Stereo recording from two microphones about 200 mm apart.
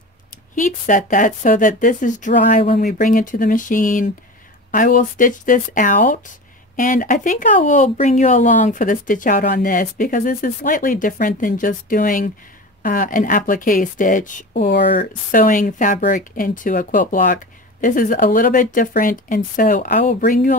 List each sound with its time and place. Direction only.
0.6 s speech: 40° left (ahead or behind)